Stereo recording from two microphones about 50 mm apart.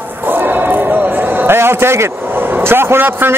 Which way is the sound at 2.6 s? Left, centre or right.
Right.